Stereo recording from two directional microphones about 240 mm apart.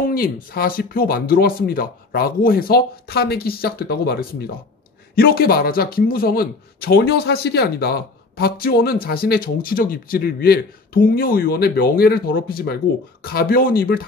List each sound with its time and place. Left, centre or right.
0.0 s speech: left